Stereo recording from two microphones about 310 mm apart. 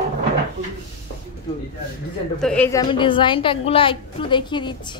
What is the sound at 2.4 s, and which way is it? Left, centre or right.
A woman's voice, centre.